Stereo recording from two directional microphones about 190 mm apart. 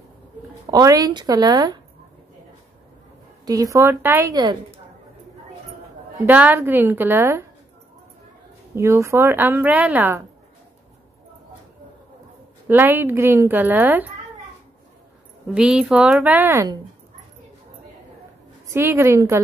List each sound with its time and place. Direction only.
0.7 s a woman's voice: 20° right (ahead or behind)
3.4 s speech: 20° right (ahead or behind)
6.1 s speech: 10° right (ahead or behind)
8.7 s speech: 15° right (ahead or behind)
12.6 s speech: 10° right (ahead or behind)
15.4 s a woman's voice: 5° right (ahead or behind)
18.7 s speech: 15° right (ahead or behind)